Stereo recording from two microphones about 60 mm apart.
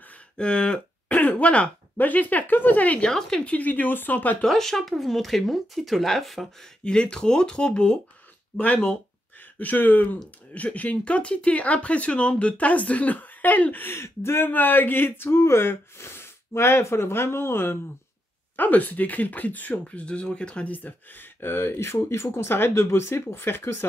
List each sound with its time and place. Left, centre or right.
0.4 s speech: centre
1.0 s speech: left
3.1 s speech: centre
3.4 s speech: left
4.5 s speech: centre
6.8 s speech: centre
8.5 s speech: left
18.6 s speech: left